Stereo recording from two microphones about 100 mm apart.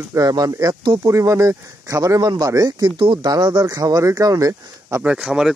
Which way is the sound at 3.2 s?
45° right (ahead or behind).